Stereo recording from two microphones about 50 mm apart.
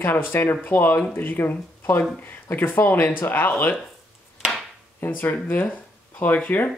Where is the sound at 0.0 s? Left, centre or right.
Left.